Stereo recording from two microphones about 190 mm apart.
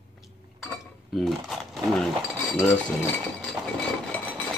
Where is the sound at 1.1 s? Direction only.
Centre (ahead or behind).